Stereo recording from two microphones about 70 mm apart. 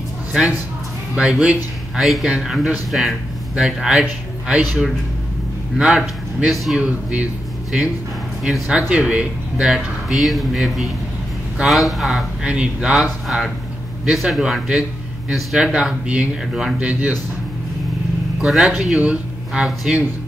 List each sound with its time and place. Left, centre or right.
1.1 s speech: centre
6.8 s speech: centre
8.5 s speech: centre
12.4 s speech: centre
12.9 s speech: centre
18.4 s speech: centre
18.9 s speech: centre